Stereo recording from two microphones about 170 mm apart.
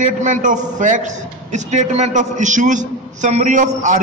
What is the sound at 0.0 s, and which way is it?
A man's voice, 50° right (ahead or behind).